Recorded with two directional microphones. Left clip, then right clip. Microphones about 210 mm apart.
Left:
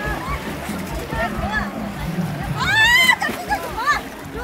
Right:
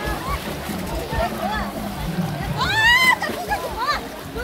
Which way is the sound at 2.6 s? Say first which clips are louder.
Left 1 dB; 40° left (ahead or behind).